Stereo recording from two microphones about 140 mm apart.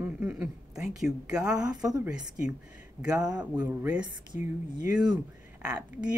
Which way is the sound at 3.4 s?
10° right (ahead or behind).